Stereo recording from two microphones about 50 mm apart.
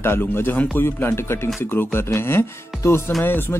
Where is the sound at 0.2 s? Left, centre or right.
Left.